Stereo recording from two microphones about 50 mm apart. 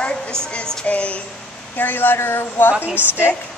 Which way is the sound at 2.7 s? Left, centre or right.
Right.